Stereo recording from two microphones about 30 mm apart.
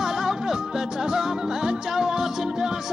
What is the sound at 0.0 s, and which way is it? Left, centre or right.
Music, centre.